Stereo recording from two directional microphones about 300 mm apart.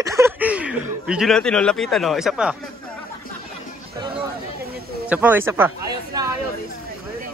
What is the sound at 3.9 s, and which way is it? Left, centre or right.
Chatter, centre.